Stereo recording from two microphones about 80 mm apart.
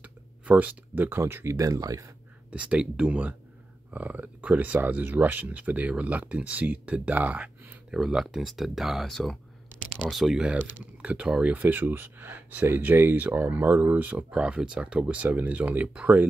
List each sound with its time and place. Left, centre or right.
0.0 s speech: centre; by 2.1 s right
2.5 s speech: centre
8.0 s speech: centre